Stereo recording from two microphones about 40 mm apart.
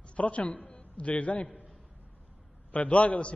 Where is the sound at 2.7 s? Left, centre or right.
Left.